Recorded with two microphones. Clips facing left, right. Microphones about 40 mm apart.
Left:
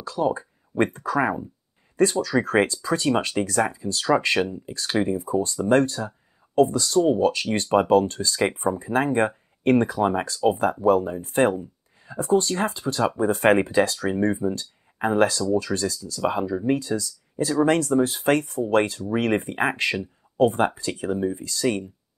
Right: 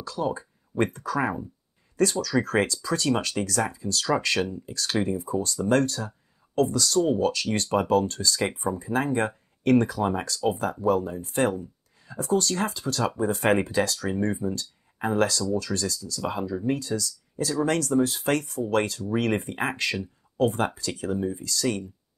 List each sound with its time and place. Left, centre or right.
0.0 s speech: left
14.1 s speech: centre
14.5 s speech: left